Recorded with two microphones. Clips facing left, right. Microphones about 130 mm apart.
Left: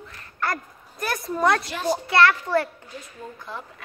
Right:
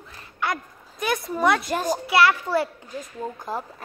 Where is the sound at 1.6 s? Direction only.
45° right (ahead or behind).